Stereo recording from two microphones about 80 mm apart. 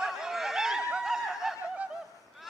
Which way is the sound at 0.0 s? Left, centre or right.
Centre.